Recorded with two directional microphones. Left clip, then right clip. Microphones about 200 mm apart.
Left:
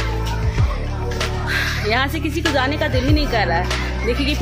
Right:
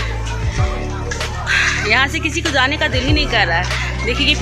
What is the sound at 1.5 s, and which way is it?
Speech, 15° left (ahead or behind).